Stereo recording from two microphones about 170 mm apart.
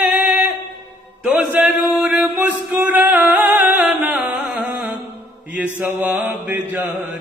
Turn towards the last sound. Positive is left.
turn(degrees=-10)  # may be behind; listen again after turning